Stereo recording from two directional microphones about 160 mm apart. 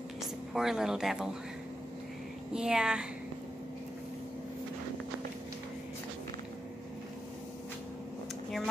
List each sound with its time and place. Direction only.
0.5 s speech: centre (ahead or behind)
2.5 s speech: 5° right (ahead or behind)